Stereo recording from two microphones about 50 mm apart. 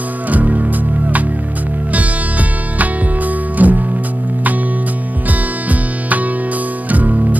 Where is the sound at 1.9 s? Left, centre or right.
Right.